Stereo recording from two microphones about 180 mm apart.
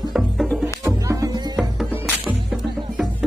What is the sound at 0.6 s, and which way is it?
Music, 15° right (ahead or behind).